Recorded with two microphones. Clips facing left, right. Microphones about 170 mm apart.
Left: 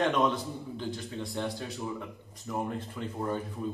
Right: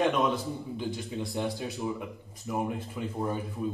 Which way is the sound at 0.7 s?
10° right (ahead or behind).